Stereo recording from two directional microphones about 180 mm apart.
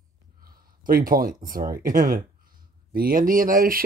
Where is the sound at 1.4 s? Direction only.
50° right (ahead or behind).